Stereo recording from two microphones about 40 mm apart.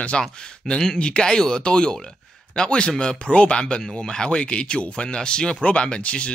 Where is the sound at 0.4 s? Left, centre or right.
Left.